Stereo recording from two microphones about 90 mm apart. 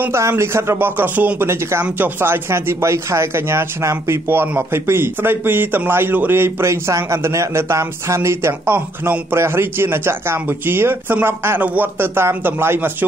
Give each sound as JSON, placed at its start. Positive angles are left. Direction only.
{"t": 0.0, "sound": "speech", "side_deg": -25}